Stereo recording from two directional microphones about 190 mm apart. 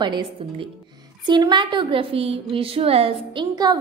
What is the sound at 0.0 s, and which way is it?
A woman's voice, 25° right (ahead or behind).